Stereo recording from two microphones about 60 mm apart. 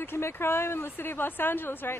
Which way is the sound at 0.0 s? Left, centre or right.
Left.